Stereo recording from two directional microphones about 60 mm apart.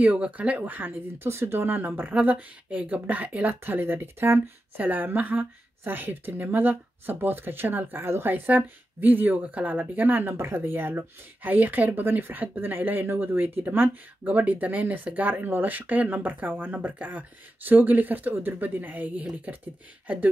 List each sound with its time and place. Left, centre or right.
0.0 s speech: right
3.6 s speech: right
10.3 s speech: right